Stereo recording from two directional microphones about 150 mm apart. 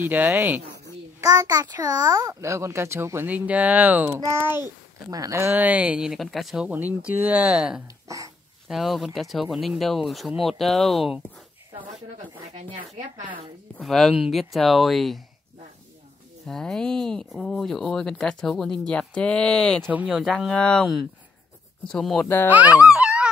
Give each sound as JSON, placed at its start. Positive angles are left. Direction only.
{"t": 0.0, "sound": "a child's voice", "side_deg": -15}
{"t": 5.5, "sound": "a child's voice", "side_deg": -10}
{"t": 8.1, "sound": "speech", "side_deg": -20}
{"t": 8.6, "sound": "speech", "side_deg": 0}
{"t": 12.5, "sound": "speech", "side_deg": -40}
{"t": 13.7, "sound": "speech", "side_deg": 0}
{"t": 16.4, "sound": "speech", "side_deg": 5}
{"t": 19.9, "sound": "speech", "side_deg": -10}
{"t": 22.5, "sound": "a child's voice", "side_deg": -10}
{"t": 22.9, "sound": "dog", "side_deg": -5}